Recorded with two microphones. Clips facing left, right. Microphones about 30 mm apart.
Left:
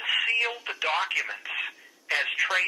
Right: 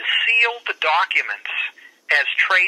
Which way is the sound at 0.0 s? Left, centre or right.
Right.